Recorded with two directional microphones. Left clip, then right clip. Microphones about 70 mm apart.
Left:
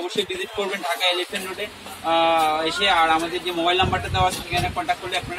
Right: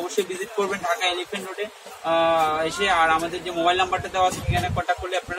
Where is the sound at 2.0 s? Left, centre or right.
Centre.